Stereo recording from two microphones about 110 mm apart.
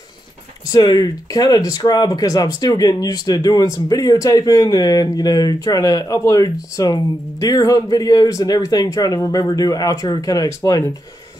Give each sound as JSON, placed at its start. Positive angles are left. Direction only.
{"t": 0.7, "sound": "speech", "side_deg": 35}